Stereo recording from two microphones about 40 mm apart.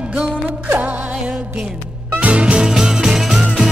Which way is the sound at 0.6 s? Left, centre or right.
Right.